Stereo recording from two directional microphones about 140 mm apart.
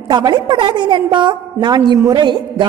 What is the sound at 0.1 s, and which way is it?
A woman's voice, 30° right (ahead or behind).